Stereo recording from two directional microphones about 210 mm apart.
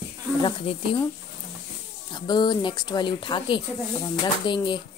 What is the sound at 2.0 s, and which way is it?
Speech, 20° left (ahead or behind).